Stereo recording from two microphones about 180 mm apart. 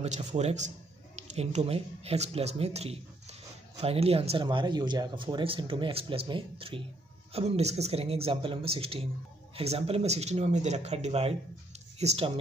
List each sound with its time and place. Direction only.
0.0 s speech: 40° right (ahead or behind)